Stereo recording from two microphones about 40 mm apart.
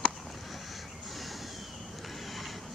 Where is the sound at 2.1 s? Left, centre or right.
Centre.